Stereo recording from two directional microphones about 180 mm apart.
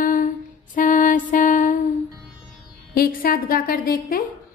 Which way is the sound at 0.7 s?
45° left (ahead or behind).